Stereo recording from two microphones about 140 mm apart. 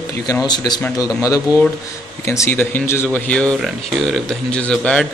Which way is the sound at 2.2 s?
20° left (ahead or behind).